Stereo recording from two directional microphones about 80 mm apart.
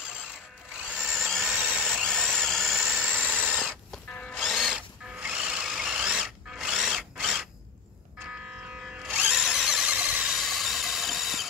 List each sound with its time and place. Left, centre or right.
1.1 s a sound: centre
1.4 s a sound: centre
2.0 s drill: centre
3.1 s tools: right
3.9 s music: centre
4.4 s tools: centre
9.0 s a sound: centre
9.4 s squeal: centre
10.3 s engine: centre